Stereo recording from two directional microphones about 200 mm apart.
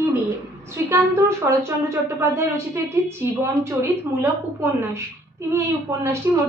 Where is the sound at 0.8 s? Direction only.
10° right (ahead or behind).